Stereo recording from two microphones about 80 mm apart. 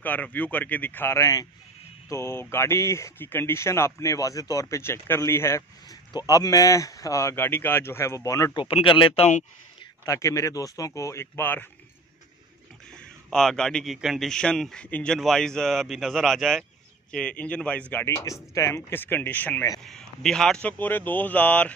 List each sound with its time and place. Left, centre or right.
0.0 s speech: left
1.1 s speech: left
6.2 s speech: left
8.2 s speech: left
8.5 s speech: left
10.0 s speech: left
12.9 s a man's voice: centre
14.0 s speech: centre
14.3 s a man's voice: centre
17.1 s a man's voice: centre
18.0 s speech: left
19.8 s a man's voice: centre
20.7 s speech: left